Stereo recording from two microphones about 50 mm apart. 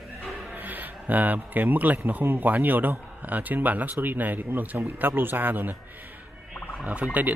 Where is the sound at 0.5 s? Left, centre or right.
Right.